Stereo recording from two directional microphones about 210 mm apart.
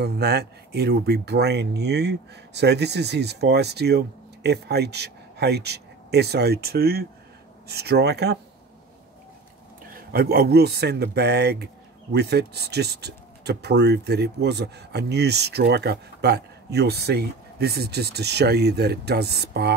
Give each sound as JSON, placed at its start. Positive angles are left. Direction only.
{"t": 0.0, "sound": "speech", "side_deg": -50}
{"t": 9.9, "sound": "speech", "side_deg": -45}